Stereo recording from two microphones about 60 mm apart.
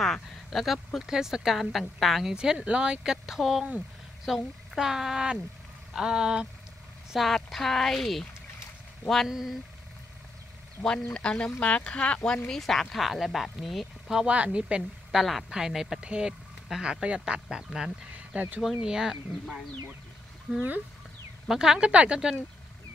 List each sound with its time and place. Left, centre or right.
0.0 s speech: centre
2.3 s speech: centre
7.2 s speech: centre
9.3 s speech: centre
10.8 s speech: centre
12.4 s speech: centre
14.3 s a woman's voice: right
15.0 s speech: centre
18.1 s speech: right
18.9 s speech: centre
20.5 s speech: centre